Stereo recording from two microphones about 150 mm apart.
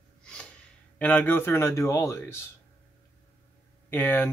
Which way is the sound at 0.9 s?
10° left (ahead or behind).